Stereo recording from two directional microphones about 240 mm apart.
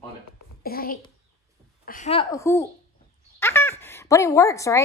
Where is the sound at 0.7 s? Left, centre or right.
Left.